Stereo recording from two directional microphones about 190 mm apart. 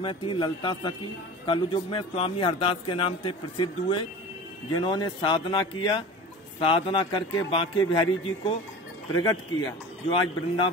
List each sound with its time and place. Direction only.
0.0 s a man's voice: 25° left (ahead or behind)
10.0 s a man's voice: 25° left (ahead or behind)